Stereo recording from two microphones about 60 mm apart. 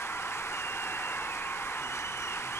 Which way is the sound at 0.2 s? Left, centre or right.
Left.